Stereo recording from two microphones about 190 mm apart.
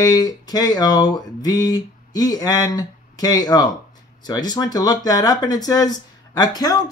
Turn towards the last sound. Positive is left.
turn(degrees=20)  # may be behind; listen again after turning